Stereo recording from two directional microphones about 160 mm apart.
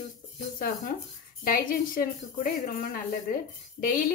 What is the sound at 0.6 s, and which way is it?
A woman's voice, 60° left (ahead or behind).